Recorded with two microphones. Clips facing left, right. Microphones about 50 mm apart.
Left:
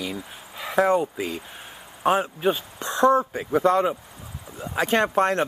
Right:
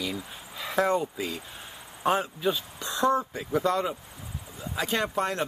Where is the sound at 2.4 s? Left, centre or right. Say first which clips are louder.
Left 4 dB; left.